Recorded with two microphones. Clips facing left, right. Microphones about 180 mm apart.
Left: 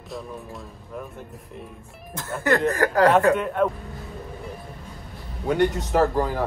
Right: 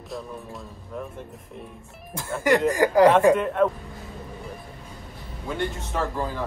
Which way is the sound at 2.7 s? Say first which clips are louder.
Right 4 dB; 15° right (ahead or behind).